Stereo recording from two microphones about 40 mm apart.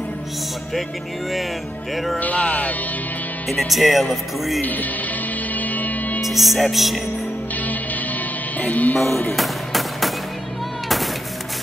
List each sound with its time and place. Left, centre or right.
2.3 s music: left
3.5 s speech: centre
5.5 s music: left
6.2 s music: centre
6.7 s speech: centre
8.5 s music: left
9.3 s music: centre